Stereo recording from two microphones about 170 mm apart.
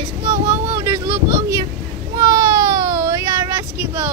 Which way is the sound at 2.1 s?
20° right (ahead or behind).